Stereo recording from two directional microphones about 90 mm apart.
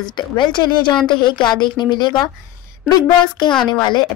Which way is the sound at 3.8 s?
60° left (ahead or behind).